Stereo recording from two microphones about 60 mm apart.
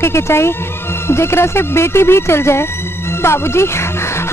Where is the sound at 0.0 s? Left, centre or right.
Left.